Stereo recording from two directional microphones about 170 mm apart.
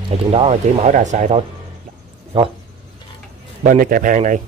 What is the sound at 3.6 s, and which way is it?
Speech, 50° right (ahead or behind).